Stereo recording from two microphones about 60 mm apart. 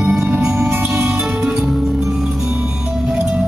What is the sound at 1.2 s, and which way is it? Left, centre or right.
Music, centre.